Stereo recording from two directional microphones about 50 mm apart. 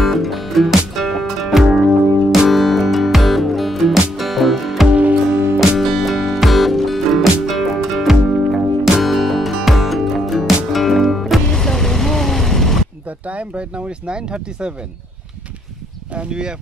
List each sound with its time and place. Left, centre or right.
0.0 s music: centre
4.9 s music: right
5.8 s music: centre
11.4 s vehicle: centre
13.3 s a sound: right
16.2 s speech: centre